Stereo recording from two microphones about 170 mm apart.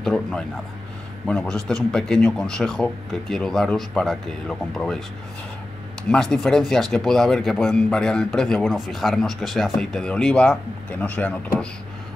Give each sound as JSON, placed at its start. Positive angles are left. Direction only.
{"t": 0.0, "sound": "speech", "side_deg": 5}
{"t": 6.0, "sound": "speech", "side_deg": 5}